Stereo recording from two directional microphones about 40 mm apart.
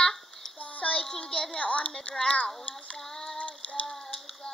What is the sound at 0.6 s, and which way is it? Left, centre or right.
Child singing, left.